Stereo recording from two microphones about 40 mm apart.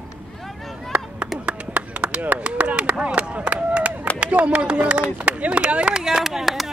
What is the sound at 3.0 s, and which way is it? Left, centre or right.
Run, right.